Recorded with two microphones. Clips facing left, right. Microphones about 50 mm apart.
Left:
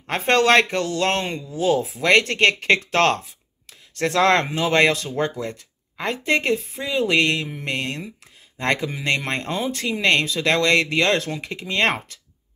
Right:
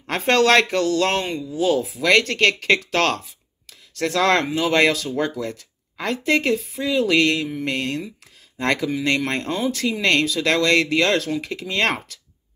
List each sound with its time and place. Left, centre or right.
0.0 s speech: centre